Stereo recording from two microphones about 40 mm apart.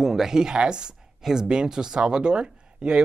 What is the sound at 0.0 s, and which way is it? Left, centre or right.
Speech, centre.